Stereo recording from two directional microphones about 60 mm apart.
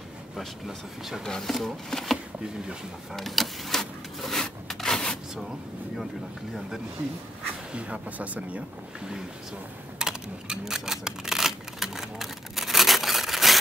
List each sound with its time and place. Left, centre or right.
0.4 s speech: centre
1.2 s speech: centre
3.2 s rub: centre
7.7 s speech: centre
9.9 s a sound: centre